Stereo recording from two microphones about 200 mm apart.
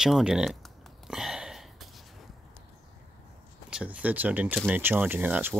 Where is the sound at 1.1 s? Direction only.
Centre (ahead or behind).